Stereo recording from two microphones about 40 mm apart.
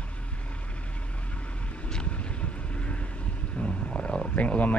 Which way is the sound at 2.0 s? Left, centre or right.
Left.